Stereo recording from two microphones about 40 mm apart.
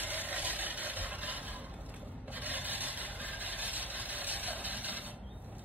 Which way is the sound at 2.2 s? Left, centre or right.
Right.